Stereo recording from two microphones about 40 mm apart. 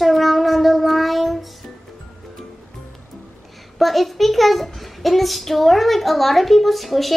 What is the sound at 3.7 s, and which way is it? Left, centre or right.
A child's voice, centre.